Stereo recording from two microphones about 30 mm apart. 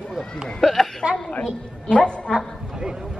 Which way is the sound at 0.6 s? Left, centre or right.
Centre.